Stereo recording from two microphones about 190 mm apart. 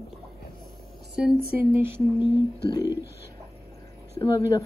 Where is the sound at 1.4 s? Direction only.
50° right (ahead or behind).